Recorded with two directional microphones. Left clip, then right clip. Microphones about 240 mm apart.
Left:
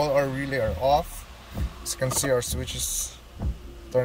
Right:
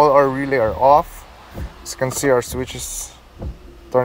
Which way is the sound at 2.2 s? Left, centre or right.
Right.